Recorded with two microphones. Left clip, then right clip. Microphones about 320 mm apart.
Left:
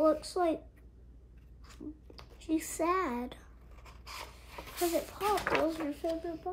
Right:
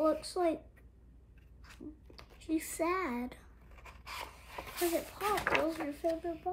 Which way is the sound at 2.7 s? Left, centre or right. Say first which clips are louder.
Left 3 dB; centre.